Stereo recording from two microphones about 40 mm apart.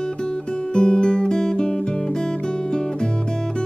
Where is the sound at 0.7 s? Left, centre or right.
Left.